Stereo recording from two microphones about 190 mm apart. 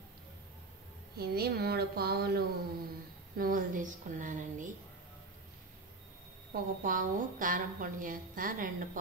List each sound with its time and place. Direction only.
1.1 s a woman's voice: 55° right (ahead or behind)
6.5 s a woman's voice: 45° right (ahead or behind)